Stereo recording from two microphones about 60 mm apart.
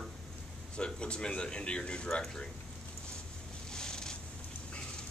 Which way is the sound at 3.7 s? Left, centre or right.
Centre.